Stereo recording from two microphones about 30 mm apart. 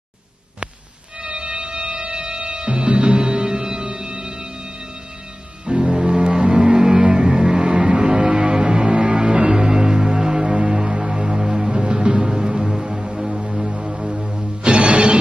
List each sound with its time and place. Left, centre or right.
1.2 s music: right
5.7 s music: right
14.7 s music: right